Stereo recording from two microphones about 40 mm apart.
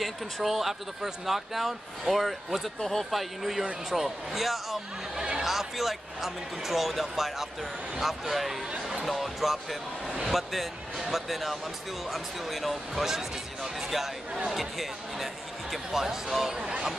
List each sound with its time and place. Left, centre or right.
0.0 s speech: centre
8.7 s speech: centre
9.0 s speech: centre
16.5 s speech: right